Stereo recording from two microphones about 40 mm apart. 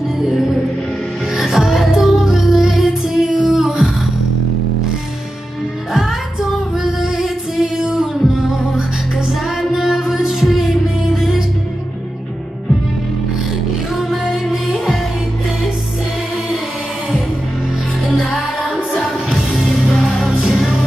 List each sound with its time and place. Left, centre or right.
1.3 s music: centre
5.9 s music: centre
13.9 s music: centre